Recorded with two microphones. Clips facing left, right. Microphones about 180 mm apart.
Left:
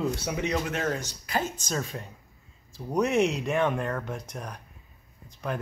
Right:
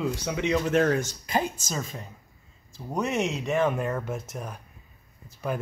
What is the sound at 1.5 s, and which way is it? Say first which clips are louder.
Speech: left 2 dB; centre (ahead or behind).